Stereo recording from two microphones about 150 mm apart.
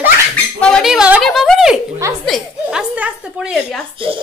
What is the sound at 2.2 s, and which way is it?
Chuckle, centre (ahead or behind).